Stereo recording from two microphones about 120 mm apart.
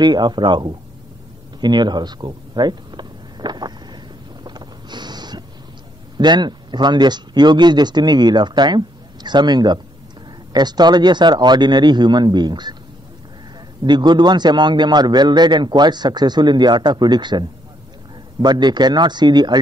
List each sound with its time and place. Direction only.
0.0 s speech: 35° right (ahead or behind)
1.6 s a sound: 35° right (ahead or behind)
6.1 s speech: 40° right (ahead or behind)
13.8 s speech: 40° right (ahead or behind)